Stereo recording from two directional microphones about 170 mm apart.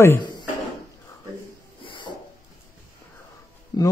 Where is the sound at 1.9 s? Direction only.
25° left (ahead or behind).